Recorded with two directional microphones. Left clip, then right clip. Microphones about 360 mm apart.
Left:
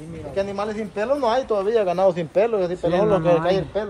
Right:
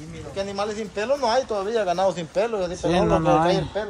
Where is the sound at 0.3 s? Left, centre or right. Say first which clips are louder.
Left 2 dB; left.